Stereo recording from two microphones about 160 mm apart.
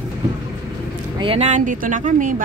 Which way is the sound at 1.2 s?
40° right (ahead or behind).